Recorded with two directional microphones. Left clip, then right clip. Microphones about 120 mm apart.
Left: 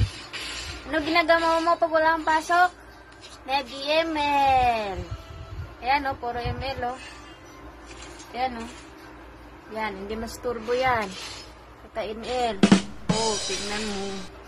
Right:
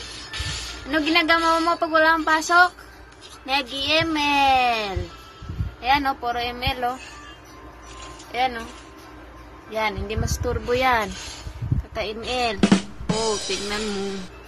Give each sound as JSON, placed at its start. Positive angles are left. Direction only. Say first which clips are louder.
{"t": 0.9, "sound": "speech", "louder": "right 2 dB", "side_deg": -15}
{"t": 6.3, "sound": "speech", "louder": "right 5 dB", "side_deg": -50}
{"t": 9.8, "sound": "speech", "louder": "right 5 dB", "side_deg": -55}
{"t": 10.4, "sound": "speech", "louder": "right 3 dB", "side_deg": -40}
{"t": 11.9, "sound": "speech", "louder": "right 2 dB", "side_deg": -30}
{"t": 12.5, "sound": "music", "louder": "even", "side_deg": 0}